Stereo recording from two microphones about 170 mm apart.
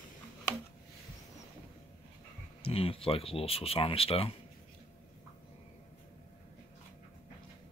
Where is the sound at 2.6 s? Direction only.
35° left (ahead or behind).